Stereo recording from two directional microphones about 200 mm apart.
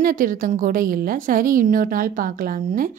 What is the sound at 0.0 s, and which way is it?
A woman's voice, 45° right (ahead or behind).